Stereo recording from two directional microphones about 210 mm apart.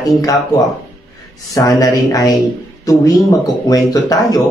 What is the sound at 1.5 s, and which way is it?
Speech, 15° left (ahead or behind).